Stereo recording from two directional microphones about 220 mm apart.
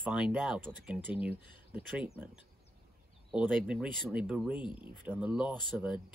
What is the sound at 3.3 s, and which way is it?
Speech, 5° right (ahead or behind).